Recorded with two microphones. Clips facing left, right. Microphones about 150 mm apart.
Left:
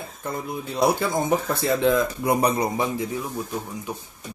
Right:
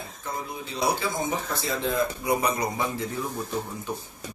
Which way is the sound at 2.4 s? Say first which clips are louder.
Left 4 dB; 30° left (ahead or behind).